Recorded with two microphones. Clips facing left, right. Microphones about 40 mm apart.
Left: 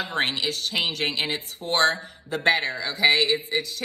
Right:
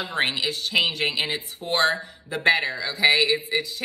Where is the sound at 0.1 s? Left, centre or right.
Right.